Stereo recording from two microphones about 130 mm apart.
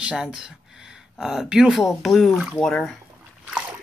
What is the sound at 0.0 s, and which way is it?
Speech, 5° right (ahead or behind).